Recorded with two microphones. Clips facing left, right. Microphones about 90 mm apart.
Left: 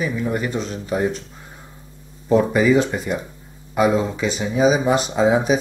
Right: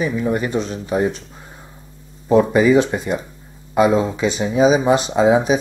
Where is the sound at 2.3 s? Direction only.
10° right (ahead or behind).